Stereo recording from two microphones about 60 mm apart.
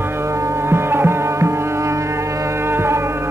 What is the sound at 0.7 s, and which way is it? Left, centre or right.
Music, right.